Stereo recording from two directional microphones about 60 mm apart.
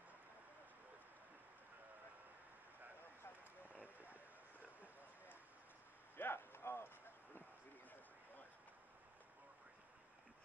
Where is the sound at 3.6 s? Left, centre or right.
Right.